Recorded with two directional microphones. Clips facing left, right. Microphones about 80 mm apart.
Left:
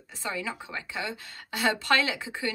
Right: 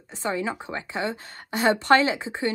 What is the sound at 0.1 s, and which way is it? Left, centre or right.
A woman's voice, right.